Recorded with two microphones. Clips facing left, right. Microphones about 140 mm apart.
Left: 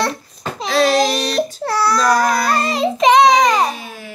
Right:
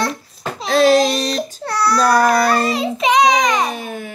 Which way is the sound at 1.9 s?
55° right (ahead or behind).